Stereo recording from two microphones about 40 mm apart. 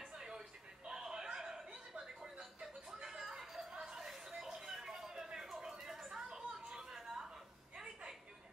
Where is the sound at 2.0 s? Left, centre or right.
Centre.